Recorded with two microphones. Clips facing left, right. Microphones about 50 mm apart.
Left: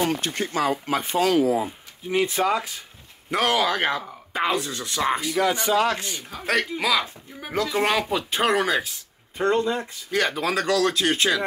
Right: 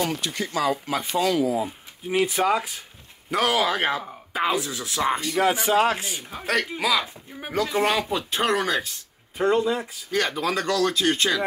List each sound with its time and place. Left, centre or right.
0.0 s speech: left
2.0 s speech: centre
5.5 s speech: centre
6.4 s speech: centre